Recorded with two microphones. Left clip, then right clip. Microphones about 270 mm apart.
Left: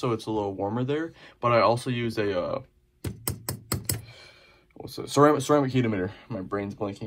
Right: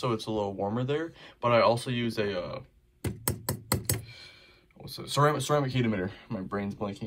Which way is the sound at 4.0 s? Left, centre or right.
Centre.